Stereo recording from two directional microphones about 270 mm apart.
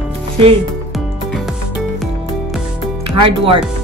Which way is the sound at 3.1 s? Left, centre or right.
Centre.